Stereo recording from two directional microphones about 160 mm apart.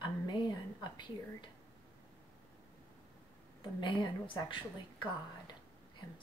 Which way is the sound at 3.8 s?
30° left (ahead or behind).